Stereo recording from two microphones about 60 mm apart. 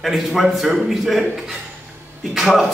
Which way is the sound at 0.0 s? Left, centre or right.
Centre.